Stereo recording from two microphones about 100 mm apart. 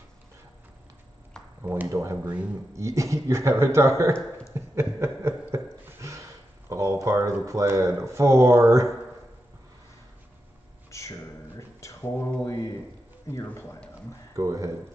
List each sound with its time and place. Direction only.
1.6 s speech: 20° right (ahead or behind)
4.6 s a sound: 25° right (ahead or behind)
7.4 s speech: 30° right (ahead or behind)
10.9 s a sound: 30° left (ahead or behind)
13.3 s speech: 25° left (ahead or behind)
14.3 s speech: 35° right (ahead or behind)